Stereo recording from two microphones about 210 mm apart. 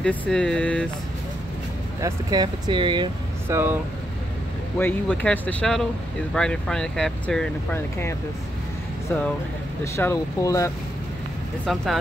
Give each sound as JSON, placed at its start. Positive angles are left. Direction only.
{"t": 0.0, "sound": "speech", "side_deg": 5}
{"t": 2.0, "sound": "speech", "side_deg": -15}
{"t": 4.7, "sound": "speech", "side_deg": 10}
{"t": 9.9, "sound": "speech", "side_deg": 15}
{"t": 11.6, "sound": "speech", "side_deg": 0}